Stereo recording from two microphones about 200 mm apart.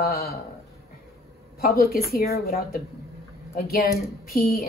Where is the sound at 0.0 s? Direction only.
50° left (ahead or behind).